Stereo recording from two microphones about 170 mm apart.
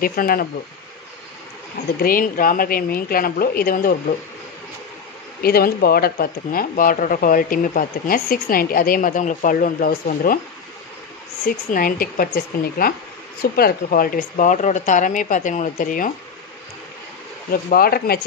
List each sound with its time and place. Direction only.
0.0 s speech: 60° left (ahead or behind)
2.0 s speech: 55° left (ahead or behind)
5.4 s speech: 65° left (ahead or behind)
11.4 s speech: 55° left (ahead or behind)
17.5 s speech: 60° left (ahead or behind)